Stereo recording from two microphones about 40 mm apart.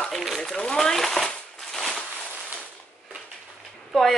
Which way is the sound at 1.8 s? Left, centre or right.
Centre.